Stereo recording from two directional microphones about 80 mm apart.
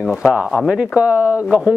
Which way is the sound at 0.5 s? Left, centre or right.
Centre.